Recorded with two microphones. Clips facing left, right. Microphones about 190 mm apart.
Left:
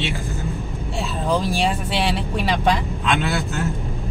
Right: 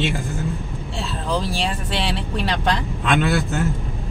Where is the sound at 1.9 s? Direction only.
5° left (ahead or behind).